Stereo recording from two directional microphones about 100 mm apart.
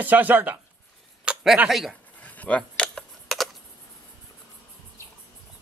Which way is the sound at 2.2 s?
15° left (ahead or behind).